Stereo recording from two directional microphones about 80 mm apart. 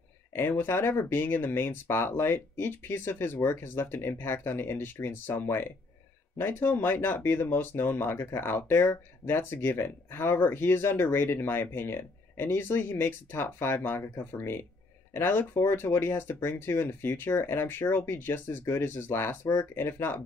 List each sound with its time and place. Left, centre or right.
0.3 s speech: left